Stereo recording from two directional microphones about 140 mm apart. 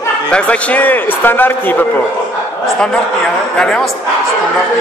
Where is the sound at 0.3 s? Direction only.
10° left (ahead or behind).